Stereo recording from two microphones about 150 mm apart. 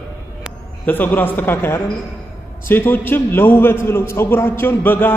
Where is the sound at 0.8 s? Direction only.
10° left (ahead or behind).